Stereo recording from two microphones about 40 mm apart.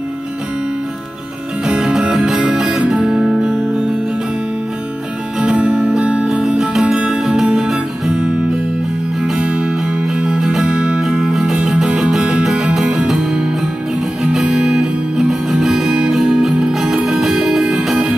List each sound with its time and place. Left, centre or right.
1.8 s music: centre
2.8 s music: right
3.1 s music: centre
5.4 s music: right
6.4 s music: centre
9.4 s music: right
10.2 s music: centre
12.2 s music: right
14.4 s guitar: right
15.2 s music: centre
17.0 s music: centre